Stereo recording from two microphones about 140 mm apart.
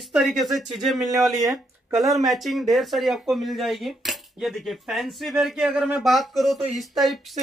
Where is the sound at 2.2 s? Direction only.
Centre (ahead or behind).